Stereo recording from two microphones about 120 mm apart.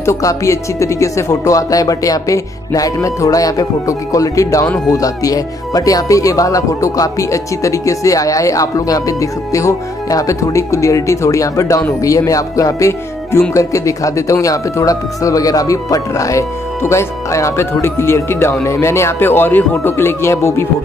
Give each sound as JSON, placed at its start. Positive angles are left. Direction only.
{"t": 0.0, "sound": "speech", "side_deg": 25}